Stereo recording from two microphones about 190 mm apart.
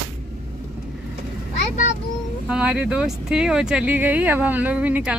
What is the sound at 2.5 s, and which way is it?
Speech, 5° right (ahead or behind).